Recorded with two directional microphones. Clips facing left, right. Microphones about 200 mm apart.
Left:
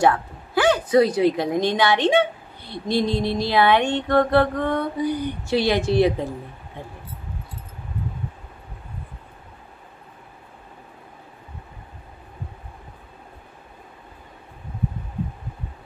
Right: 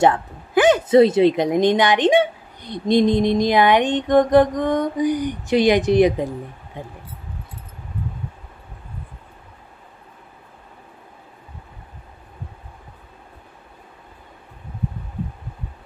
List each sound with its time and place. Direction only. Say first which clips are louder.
0.0 s a woman's voice: right 2 dB; 20° right (ahead or behind)